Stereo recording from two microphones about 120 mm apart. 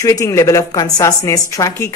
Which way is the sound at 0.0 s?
25° left (ahead or behind).